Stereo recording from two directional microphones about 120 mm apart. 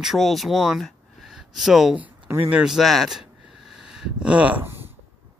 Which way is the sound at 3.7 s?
5° right (ahead or behind).